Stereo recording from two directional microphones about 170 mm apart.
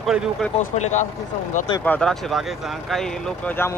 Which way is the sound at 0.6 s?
45° left (ahead or behind).